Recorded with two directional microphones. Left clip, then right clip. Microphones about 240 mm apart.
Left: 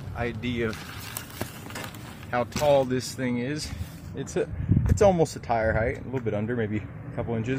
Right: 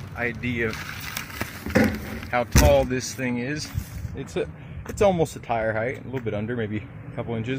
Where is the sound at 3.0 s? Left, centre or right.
Centre.